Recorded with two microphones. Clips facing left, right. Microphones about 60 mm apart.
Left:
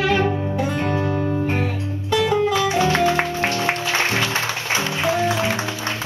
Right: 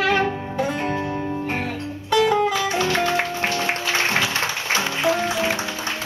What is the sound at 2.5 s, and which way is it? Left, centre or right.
Music, centre.